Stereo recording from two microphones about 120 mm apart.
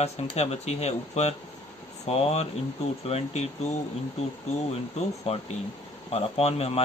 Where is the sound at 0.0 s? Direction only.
60° left (ahead or behind).